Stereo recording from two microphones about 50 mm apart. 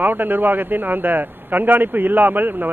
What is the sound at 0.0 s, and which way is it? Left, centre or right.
A man's voice, right.